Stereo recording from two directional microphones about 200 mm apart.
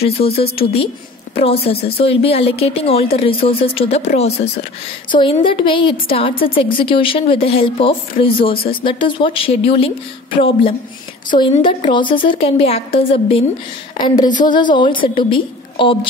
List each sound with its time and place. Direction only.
0.0 s a woman's voice: 30° left (ahead or behind)
11.2 s a woman's voice: 25° left (ahead or behind)